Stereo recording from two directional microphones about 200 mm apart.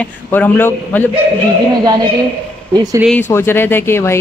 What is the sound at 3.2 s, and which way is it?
Speech, 15° left (ahead or behind).